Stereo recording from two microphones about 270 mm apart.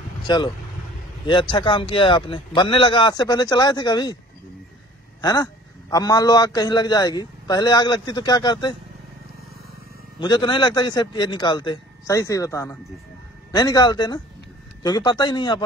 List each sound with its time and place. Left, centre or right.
0.3 s a man's voice: centre
5.2 s a man's voice: centre
10.1 s a man's voice: centre